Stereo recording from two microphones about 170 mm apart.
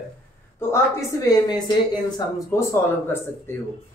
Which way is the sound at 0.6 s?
15° left (ahead or behind).